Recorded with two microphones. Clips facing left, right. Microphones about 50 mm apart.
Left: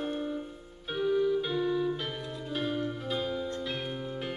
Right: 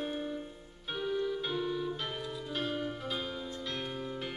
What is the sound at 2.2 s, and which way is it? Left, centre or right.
Music, left.